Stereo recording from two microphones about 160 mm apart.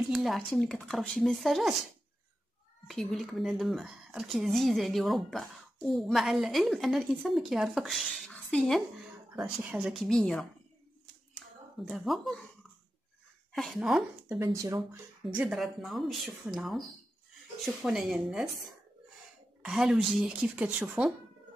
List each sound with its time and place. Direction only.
0.1 s speech: centre (ahead or behind)
2.9 s speech: centre (ahead or behind)
9.6 s speech: 5° right (ahead or behind)
11.8 s speech: 5° right (ahead or behind)
13.5 s a woman's voice: centre (ahead or behind)
14.4 s speech: 20° right (ahead or behind)
15.3 s speech: 5° right (ahead or behind)
17.8 s speech: 5° right (ahead or behind)
19.6 s speech: 5° right (ahead or behind)